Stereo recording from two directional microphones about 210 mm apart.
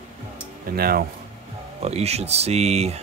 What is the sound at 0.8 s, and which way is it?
Speech, 45° right (ahead or behind).